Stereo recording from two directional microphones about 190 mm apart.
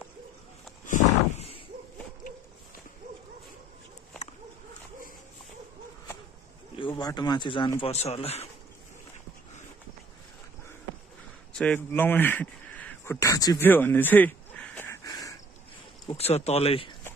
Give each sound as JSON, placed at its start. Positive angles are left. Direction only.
{"t": 0.8, "sound": "a sound", "side_deg": 40}
{"t": 6.8, "sound": "speech", "side_deg": 25}
{"t": 7.8, "sound": "speech", "side_deg": 35}
{"t": 11.5, "sound": "speech", "side_deg": 5}
{"t": 15.0, "sound": "a sound", "side_deg": 20}
{"t": 16.1, "sound": "speech", "side_deg": 35}